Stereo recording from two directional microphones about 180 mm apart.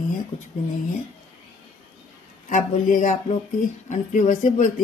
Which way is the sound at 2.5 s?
45° left (ahead or behind).